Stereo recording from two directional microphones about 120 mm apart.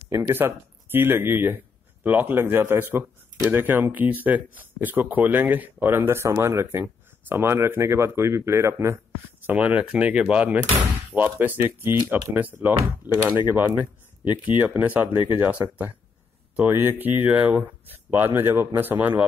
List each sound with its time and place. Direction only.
0.1 s speech: 20° right (ahead or behind)
9.5 s speech: 10° right (ahead or behind)